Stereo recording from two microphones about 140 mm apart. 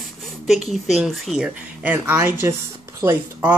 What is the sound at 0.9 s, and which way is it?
A woman's voice, centre (ahead or behind).